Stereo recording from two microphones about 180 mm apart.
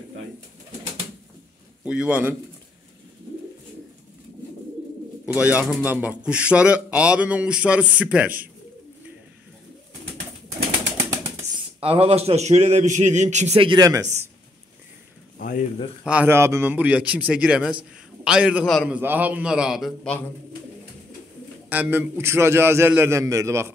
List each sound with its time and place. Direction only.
1.9 s a man's voice: 5° right (ahead or behind)
5.2 s a man's voice: 5° right (ahead or behind)
11.8 s a man's voice: 35° right (ahead or behind)
15.3 s a sound: 50° left (ahead or behind)
16.1 s a man's voice: 10° right (ahead or behind)
21.6 s a man's voice: 10° right (ahead or behind)